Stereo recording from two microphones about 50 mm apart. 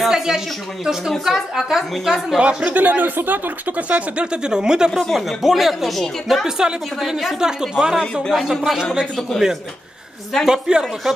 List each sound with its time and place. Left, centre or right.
0.0 s a woman's voice: centre
2.3 s a woman's voice: centre
2.7 s speech: right; by 4.9 s centre
5.1 s speech: centre
10.4 s a woman's voice: centre